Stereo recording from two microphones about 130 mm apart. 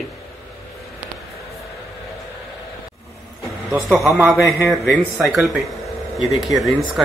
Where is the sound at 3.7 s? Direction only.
Centre (ahead or behind).